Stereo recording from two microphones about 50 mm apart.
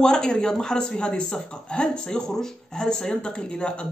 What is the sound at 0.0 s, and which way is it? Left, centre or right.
A man's voice, centre.